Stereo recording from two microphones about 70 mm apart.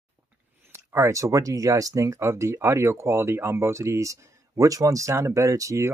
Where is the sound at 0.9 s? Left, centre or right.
Right.